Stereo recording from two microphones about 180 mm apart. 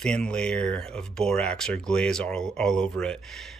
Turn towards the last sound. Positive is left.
turn(degrees=0)  # may be behind; listen again after turning